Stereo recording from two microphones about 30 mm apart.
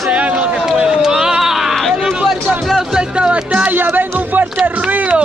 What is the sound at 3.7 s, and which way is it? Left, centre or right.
Music, right.